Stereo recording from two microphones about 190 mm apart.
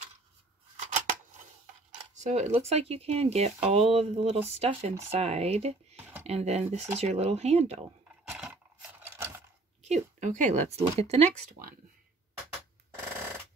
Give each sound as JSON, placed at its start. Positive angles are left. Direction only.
{"t": 0.7, "sound": "scissors", "side_deg": -40}
{"t": 2.1, "sound": "speech", "side_deg": -35}
{"t": 5.9, "sound": "a sound", "side_deg": -10}
{"t": 6.2, "sound": "speech", "side_deg": -35}
{"t": 8.3, "sound": "a sound", "side_deg": -5}
{"t": 9.8, "sound": "speech", "side_deg": -40}